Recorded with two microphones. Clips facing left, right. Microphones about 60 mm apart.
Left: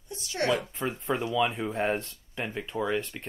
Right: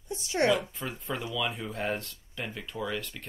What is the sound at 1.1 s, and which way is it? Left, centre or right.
Speech, left.